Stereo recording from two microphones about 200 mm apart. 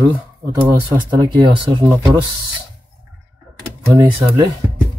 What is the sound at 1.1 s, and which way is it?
Speech, 20° right (ahead or behind).